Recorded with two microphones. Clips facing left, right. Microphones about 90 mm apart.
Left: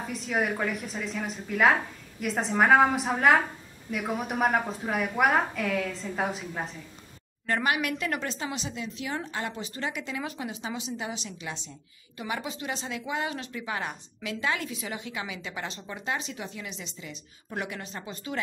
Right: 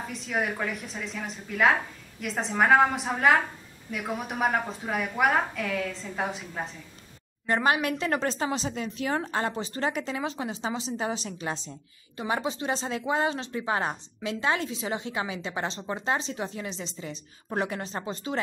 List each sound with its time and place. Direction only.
0.0 s a woman's voice: centre (ahead or behind)
7.4 s speech: 25° right (ahead or behind)